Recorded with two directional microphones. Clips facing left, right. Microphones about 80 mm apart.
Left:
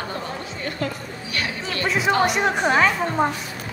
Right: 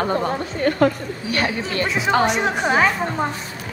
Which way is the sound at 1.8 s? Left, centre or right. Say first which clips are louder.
Even; centre.